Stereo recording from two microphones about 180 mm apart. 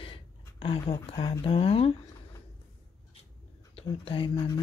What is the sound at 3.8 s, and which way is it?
Speech, 30° left (ahead or behind).